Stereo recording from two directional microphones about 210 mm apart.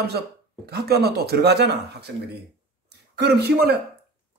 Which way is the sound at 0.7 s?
50° right (ahead or behind).